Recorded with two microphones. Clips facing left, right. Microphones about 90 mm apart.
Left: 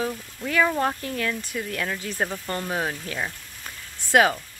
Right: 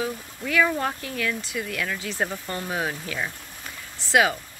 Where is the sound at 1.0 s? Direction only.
40° left (ahead or behind).